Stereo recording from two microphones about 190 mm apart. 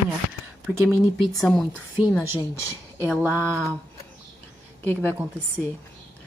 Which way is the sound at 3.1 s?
10° right (ahead or behind).